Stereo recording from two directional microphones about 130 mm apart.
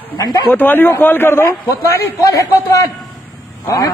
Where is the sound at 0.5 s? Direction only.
15° left (ahead or behind).